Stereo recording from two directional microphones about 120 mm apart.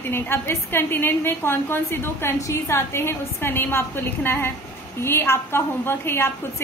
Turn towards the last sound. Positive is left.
turn(degrees=20)  # may be behind; listen again after turning